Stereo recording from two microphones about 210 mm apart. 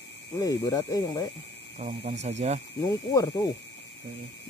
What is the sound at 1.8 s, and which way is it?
Speech, 30° right (ahead or behind).